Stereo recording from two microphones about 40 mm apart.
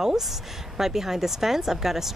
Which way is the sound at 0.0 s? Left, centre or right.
Centre.